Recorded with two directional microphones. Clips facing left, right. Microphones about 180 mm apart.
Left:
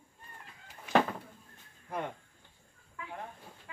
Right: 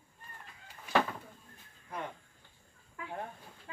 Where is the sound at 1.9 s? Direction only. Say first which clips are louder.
Left 4 dB; 55° left (ahead or behind).